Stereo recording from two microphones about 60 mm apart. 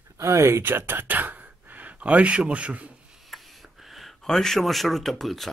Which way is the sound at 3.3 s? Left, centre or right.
Centre.